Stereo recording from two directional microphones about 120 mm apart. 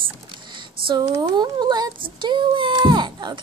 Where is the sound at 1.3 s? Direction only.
35° right (ahead or behind).